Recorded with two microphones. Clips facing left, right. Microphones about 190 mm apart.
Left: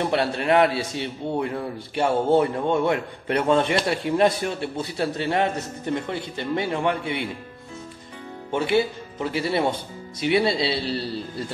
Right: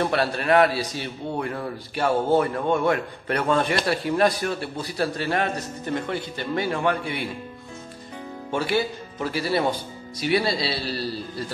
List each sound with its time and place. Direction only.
0.0 s a man's voice: 20° left (ahead or behind)
8.5 s a man's voice: 25° left (ahead or behind)